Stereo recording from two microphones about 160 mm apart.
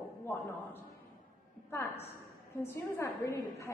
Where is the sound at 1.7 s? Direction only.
15° left (ahead or behind).